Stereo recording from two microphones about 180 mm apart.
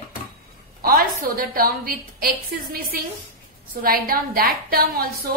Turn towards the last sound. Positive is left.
turn(degrees=-55)  # may be behind; listen again after turning